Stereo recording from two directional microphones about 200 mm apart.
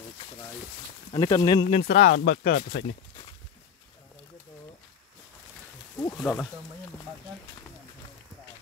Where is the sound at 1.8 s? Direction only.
50° left (ahead or behind).